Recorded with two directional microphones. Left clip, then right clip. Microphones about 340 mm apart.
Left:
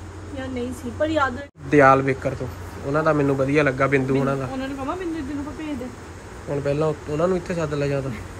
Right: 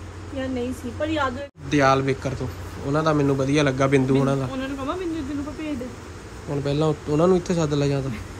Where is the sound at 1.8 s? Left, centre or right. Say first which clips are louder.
Left 4 dB; centre.